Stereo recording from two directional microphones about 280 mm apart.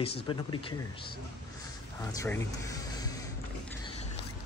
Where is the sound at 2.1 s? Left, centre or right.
Centre.